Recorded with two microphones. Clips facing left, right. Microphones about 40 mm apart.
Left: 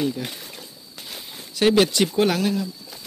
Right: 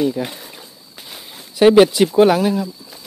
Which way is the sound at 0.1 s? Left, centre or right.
Centre.